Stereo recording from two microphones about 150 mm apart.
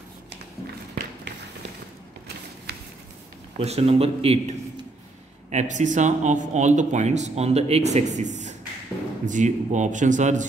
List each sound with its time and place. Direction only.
3.5 s speech: 45° right (ahead or behind)
5.5 s a man's voice: 50° right (ahead or behind)